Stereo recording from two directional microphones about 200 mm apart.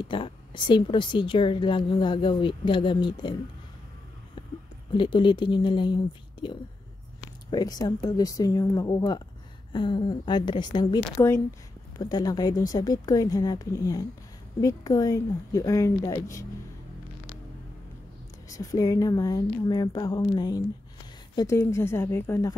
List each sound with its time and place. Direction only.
0.0 s a woman's voice: 25° left (ahead or behind)
4.9 s a woman's voice: 25° left (ahead or behind)
18.5 s a woman's voice: 15° left (ahead or behind)